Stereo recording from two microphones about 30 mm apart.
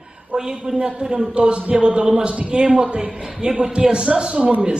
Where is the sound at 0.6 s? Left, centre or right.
Right.